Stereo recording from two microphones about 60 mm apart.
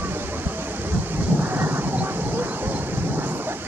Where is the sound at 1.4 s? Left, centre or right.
Right.